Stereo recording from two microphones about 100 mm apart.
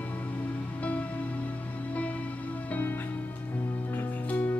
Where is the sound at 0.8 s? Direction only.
15° left (ahead or behind).